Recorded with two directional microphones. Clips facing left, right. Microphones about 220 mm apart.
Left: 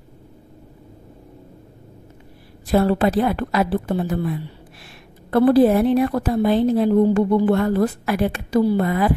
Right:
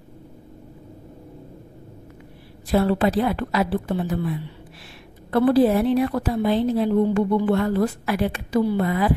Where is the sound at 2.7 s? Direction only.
45° left (ahead or behind).